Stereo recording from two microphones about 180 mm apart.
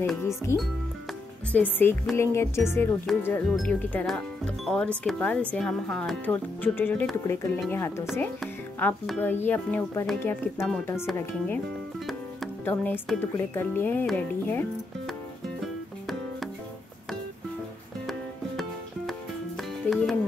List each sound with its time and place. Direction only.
0.2 s speech: 15° left (ahead or behind)
12.6 s speech: 10° left (ahead or behind)
15.6 s music: centre (ahead or behind)
18.6 s music: centre (ahead or behind)